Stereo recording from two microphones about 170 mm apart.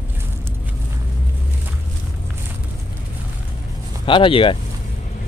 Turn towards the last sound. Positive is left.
turn(degrees=30)  # may be behind; listen again after turning